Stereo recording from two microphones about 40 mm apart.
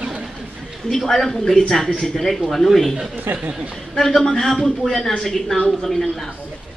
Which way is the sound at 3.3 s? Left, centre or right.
Right.